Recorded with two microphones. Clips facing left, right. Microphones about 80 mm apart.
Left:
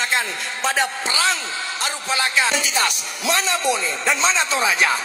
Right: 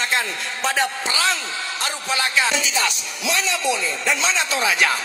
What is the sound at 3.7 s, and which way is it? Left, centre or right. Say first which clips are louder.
Speech: even; left.